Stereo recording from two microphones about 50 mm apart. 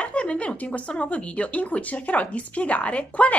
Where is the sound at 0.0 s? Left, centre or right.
Left.